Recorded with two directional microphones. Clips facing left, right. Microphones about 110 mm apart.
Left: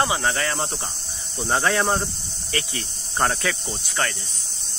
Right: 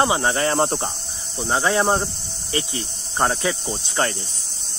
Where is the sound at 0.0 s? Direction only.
25° right (ahead or behind).